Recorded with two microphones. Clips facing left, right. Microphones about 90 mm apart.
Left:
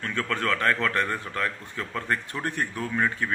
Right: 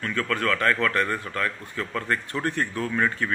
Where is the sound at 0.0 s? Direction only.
25° left (ahead or behind).